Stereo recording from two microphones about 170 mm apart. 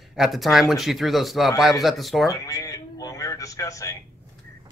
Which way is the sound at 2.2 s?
20° left (ahead or behind).